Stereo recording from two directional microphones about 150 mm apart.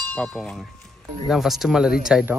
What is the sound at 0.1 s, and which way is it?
Speech, 5° left (ahead or behind).